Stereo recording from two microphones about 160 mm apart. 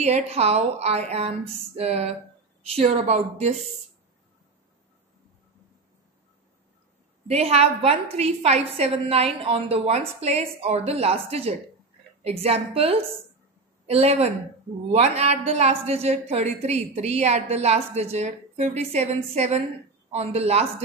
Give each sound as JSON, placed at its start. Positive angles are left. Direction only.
{"t": 0.0, "sound": "a woman's voice", "side_deg": -45}
{"t": 7.2, "sound": "a woman's voice", "side_deg": -40}